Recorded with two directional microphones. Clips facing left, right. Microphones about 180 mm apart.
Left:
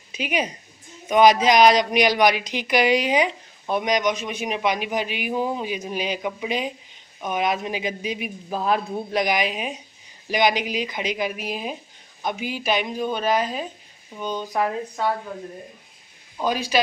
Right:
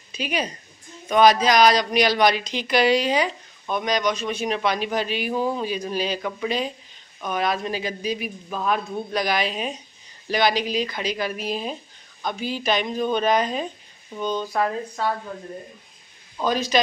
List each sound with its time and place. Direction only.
0.1 s a woman's voice: 20° left (ahead or behind)
8.5 s a man's voice: 35° left (ahead or behind); by 15.1 s 15° left (ahead or behind)
16.3 s a man's voice: 10° left (ahead or behind)